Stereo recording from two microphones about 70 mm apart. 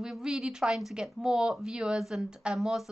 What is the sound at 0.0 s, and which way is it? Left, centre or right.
Speech, centre.